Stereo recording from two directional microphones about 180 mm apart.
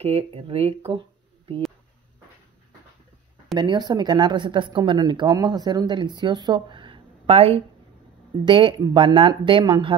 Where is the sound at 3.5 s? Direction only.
25° right (ahead or behind).